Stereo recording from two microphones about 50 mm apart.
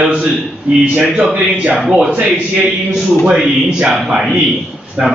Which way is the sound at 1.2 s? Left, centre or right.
Centre.